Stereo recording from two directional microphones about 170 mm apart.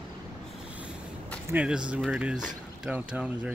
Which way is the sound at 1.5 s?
5° right (ahead or behind).